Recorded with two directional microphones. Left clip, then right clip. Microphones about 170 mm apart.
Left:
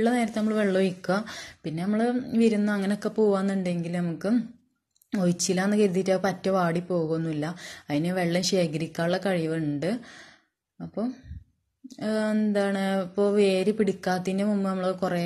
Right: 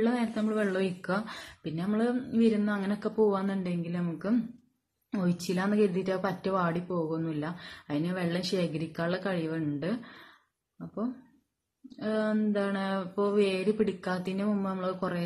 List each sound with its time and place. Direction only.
0.0 s a woman's voice: 30° left (ahead or behind)
12.0 s a woman's voice: 30° left (ahead or behind)